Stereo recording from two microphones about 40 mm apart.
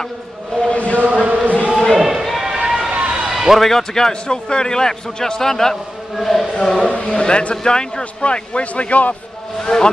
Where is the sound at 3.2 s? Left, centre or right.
Centre.